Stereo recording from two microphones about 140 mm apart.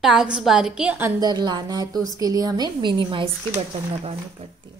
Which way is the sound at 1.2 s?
30° right (ahead or behind).